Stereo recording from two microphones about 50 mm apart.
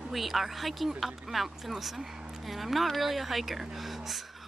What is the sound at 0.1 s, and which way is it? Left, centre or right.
Speech, centre.